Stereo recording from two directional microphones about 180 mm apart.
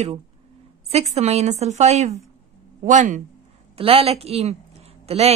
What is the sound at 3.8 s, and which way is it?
Speech, 35° right (ahead or behind).